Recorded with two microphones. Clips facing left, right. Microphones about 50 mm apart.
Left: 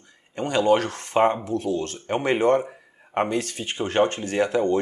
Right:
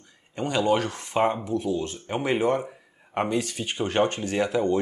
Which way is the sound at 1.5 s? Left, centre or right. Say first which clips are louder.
Left 1 dB; left.